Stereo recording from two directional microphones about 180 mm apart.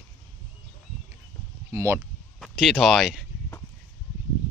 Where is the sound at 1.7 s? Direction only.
15° right (ahead or behind).